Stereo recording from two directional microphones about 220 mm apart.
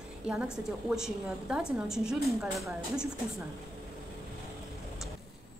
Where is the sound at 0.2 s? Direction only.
5° right (ahead or behind).